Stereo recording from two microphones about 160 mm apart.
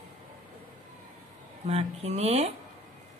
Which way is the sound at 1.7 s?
40° right (ahead or behind).